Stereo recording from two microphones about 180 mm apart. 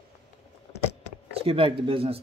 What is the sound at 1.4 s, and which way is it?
Speech, 30° right (ahead or behind).